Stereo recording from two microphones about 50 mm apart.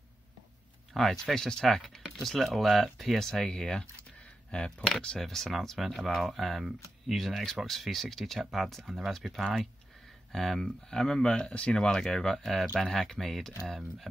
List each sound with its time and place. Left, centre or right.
0.9 s speech: centre
5.2 s speech: centre